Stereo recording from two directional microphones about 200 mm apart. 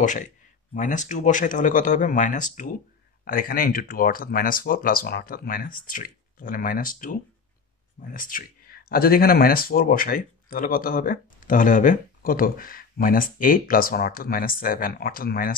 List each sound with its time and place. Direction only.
0.0 s speech: 40° left (ahead or behind)